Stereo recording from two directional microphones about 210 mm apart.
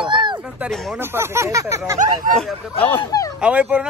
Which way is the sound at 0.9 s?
10° right (ahead or behind).